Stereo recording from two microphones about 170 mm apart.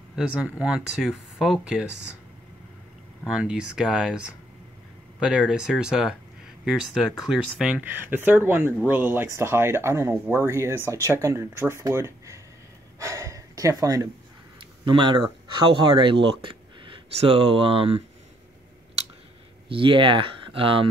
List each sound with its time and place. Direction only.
0.1 s speech: 5° right (ahead or behind)
3.3 s speech: 5° right (ahead or behind)
13.0 s gasp: 20° right (ahead or behind)
14.9 s speech: 30° right (ahead or behind)
19.7 s speech: 30° right (ahead or behind)